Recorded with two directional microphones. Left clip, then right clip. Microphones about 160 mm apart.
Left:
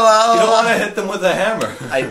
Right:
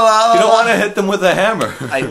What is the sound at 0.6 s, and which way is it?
Speech, 45° left (ahead or behind).